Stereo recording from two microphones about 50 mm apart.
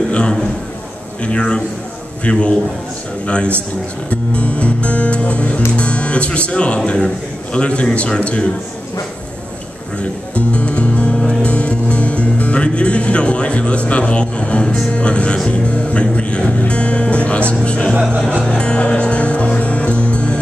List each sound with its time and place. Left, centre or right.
0.1 s a man's voice: centre
10.3 s music: left